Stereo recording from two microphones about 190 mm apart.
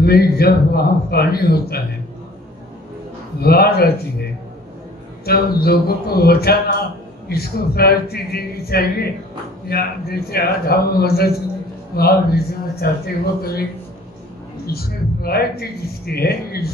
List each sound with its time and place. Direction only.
0.0 s speech: 55° left (ahead or behind)
3.3 s speech: 55° left (ahead or behind)
14.7 s speech: 55° left (ahead or behind)